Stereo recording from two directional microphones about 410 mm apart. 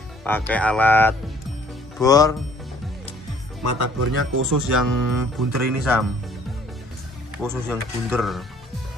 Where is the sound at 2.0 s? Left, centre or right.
Centre.